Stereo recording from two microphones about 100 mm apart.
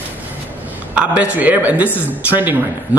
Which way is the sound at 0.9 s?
15° right (ahead or behind).